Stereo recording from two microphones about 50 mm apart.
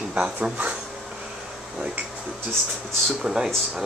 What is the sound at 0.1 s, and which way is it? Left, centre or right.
Speech, right.